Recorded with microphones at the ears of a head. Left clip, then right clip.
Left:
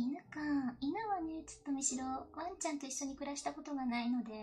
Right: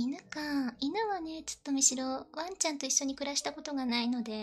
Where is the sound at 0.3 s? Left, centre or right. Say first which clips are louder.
Right 3 dB; right.